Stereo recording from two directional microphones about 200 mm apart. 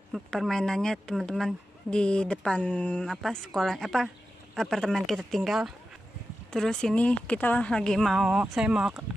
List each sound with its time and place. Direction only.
0.1 s speech: centre (ahead or behind)